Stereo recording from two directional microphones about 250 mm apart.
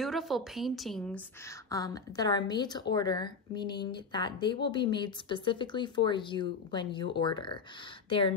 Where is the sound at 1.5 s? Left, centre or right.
Centre.